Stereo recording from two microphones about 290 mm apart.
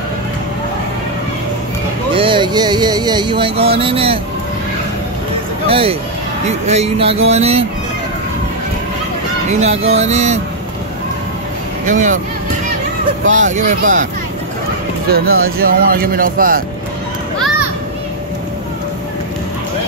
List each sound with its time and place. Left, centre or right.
2.1 s speech: centre
5.7 s speech: centre
9.5 s speech: right
11.8 s speech: right
13.3 s speech: right
15.0 s speech: right